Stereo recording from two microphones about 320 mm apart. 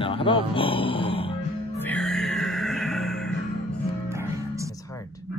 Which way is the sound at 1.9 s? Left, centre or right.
Centre.